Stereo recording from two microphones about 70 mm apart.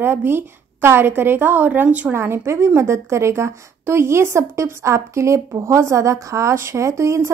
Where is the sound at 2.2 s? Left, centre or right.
Right.